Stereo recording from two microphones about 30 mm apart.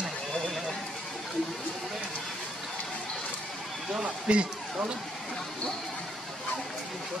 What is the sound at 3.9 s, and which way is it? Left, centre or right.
Speech, right.